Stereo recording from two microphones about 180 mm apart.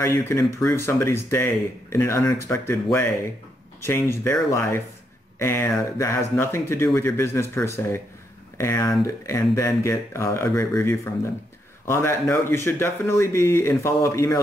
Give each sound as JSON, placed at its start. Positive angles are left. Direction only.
{"t": 0.0, "sound": "speech", "side_deg": 15}